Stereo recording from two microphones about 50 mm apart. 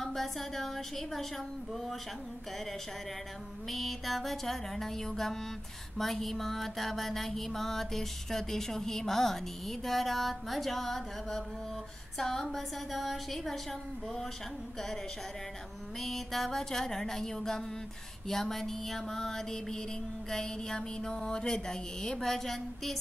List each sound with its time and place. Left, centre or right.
0.0 s mantra: centre
3.7 s mantra: centre
16.0 s a sound: centre
22.2 s mantra: centre